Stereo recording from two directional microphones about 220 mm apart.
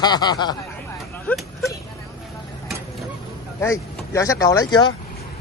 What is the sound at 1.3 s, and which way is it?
Speech, 5° left (ahead or behind).